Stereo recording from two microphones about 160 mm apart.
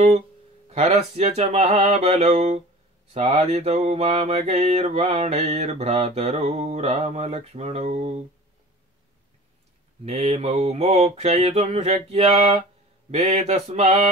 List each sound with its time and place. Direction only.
0.7 s mantra: 45° right (ahead or behind)
10.0 s mantra: 40° right (ahead or behind)